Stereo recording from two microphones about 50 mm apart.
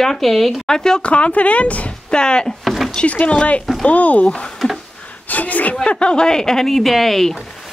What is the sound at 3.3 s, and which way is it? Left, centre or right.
Speech, left.